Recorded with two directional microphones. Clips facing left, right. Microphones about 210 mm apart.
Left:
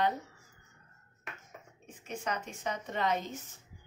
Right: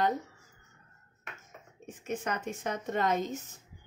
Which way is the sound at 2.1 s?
50° right (ahead or behind).